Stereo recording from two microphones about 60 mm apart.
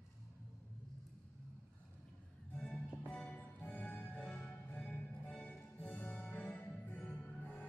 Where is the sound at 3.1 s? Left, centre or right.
Centre.